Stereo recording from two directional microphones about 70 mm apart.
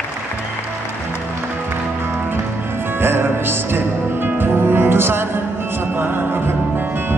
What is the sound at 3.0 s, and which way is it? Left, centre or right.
Music, right.